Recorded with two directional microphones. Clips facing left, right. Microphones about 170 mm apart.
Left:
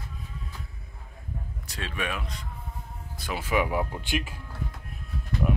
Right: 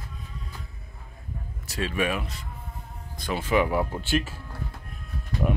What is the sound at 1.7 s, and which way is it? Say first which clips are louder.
Speech: right 6 dB; 5° right (ahead or behind).